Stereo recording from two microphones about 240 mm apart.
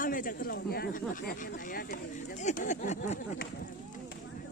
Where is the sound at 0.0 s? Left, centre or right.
Left.